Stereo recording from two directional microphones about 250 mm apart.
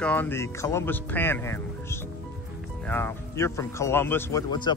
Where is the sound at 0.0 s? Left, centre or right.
Centre.